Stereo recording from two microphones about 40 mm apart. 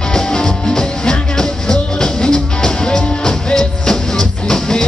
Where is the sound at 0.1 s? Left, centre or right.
Centre.